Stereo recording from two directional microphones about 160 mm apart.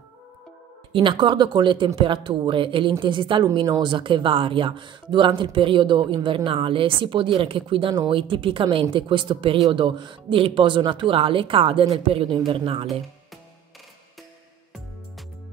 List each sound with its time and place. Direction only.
0.9 s a woman's voice: 30° right (ahead or behind)